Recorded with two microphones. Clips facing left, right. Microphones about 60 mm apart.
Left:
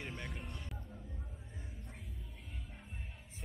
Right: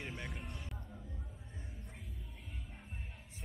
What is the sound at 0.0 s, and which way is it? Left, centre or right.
Music, centre.